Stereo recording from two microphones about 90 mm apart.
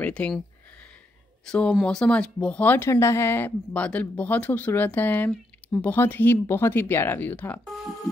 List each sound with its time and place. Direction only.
0.0 s speech: 15° left (ahead or behind)
1.4 s speech: 10° left (ahead or behind)
2.8 s speech: 30° left (ahead or behind)